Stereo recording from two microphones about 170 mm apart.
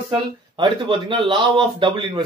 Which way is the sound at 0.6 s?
30° right (ahead or behind).